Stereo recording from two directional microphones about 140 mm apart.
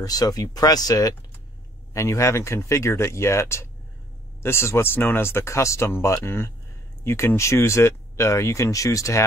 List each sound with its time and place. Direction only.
0.0 s speech: 25° left (ahead or behind)